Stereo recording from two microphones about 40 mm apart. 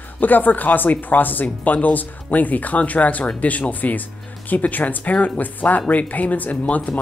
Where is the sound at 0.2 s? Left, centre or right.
Left.